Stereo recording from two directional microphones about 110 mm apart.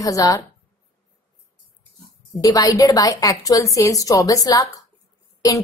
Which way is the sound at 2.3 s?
35° left (ahead or behind).